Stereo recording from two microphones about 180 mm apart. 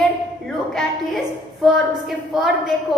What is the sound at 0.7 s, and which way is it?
A woman's voice, centre (ahead or behind).